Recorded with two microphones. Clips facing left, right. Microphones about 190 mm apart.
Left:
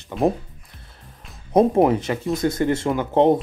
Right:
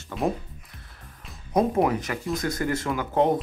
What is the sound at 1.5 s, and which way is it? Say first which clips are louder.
Speech: left 6 dB; 30° left (ahead or behind).